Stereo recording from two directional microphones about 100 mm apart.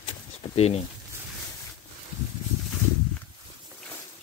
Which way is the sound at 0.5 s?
90° left.